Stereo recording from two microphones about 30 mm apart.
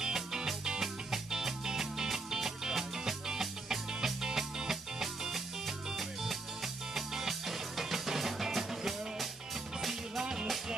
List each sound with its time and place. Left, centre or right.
0.0 s music: right
10.2 s music: centre